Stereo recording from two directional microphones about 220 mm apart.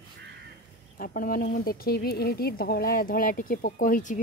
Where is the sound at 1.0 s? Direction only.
40° left (ahead or behind).